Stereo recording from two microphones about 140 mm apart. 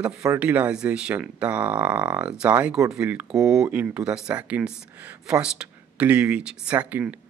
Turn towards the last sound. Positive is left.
turn(degrees=-10)  # may be behind; listen again after turning